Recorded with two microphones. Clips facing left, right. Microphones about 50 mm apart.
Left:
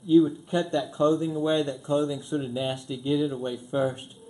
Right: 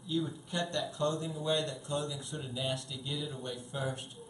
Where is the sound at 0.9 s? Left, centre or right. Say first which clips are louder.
Left 10 dB; left.